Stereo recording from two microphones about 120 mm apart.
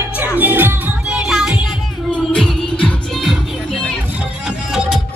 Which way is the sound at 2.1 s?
5° left (ahead or behind).